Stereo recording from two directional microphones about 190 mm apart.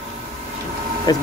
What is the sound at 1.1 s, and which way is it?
Speech, 20° left (ahead or behind).